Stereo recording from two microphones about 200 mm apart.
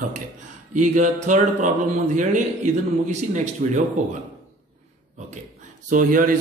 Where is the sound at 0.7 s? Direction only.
40° right (ahead or behind).